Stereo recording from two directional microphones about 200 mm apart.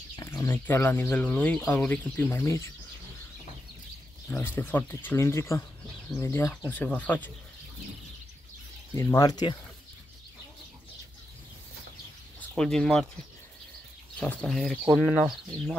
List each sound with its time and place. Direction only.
0.1 s speech: 15° left (ahead or behind)
4.3 s speech: 10° left (ahead or behind)
8.9 s speech: 15° left (ahead or behind)
12.4 s speech: 5° left (ahead or behind)
14.2 s speech: 5° left (ahead or behind)